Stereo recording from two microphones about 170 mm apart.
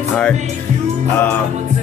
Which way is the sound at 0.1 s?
5° left (ahead or behind).